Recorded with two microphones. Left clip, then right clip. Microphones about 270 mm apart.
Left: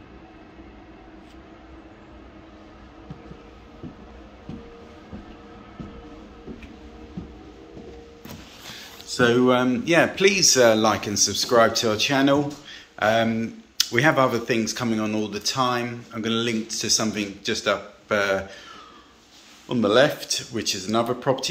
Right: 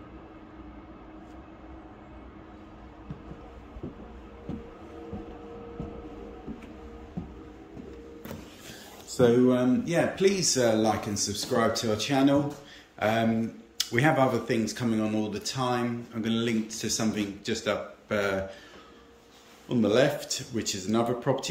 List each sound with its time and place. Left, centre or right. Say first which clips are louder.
9.1 s a sound: left 3 dB; right
9.5 s speech: left 6 dB; centre
19.7 s speech: left 5 dB; centre